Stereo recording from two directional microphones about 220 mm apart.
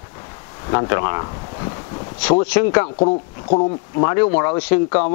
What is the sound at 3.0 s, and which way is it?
A man's voice, 30° left (ahead or behind).